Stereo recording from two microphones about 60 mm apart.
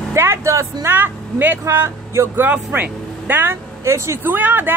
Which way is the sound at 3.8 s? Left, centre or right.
Right.